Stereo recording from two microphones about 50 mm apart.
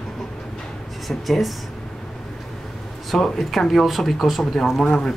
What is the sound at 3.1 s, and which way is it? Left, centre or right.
Speech, centre.